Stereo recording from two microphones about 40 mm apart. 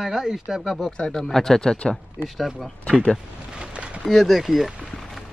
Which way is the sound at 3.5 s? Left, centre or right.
Right.